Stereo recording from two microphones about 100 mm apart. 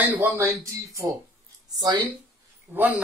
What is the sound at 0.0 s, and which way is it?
Speech, 15° right (ahead or behind).